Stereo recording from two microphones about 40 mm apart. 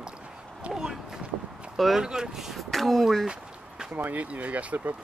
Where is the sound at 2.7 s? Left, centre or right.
Centre.